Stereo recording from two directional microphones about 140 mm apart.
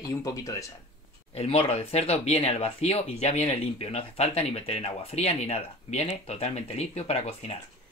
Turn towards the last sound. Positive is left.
turn(degrees=50)  # may be behind; listen again after turning